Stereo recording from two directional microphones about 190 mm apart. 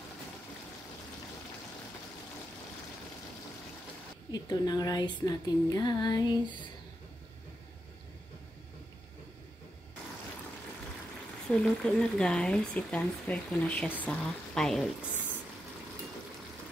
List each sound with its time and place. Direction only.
4.3 s speech: 20° left (ahead or behind)
11.5 s speech: 5° left (ahead or behind)